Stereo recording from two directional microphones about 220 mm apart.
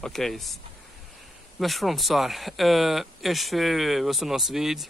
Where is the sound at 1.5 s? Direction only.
Centre (ahead or behind).